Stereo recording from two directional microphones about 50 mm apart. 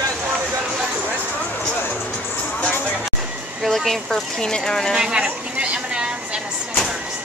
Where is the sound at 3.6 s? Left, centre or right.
Centre.